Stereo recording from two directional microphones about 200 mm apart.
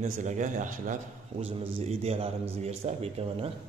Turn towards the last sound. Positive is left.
turn(degrees=-30)  # may be behind; listen again after turning